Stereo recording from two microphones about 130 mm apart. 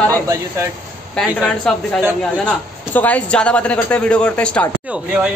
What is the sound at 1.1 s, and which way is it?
A man's voice, 5° left (ahead or behind).